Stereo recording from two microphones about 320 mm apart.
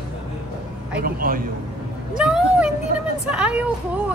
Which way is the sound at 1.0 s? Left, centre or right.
Right.